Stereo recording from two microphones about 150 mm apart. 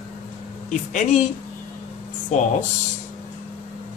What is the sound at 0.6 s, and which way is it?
Speech, 55° left (ahead or behind).